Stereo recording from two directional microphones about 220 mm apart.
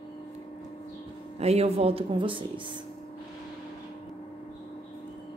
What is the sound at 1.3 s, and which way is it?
Speech, 30° right (ahead or behind).